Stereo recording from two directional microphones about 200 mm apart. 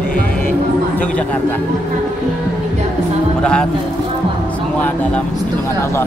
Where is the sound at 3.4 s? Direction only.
5° left (ahead or behind).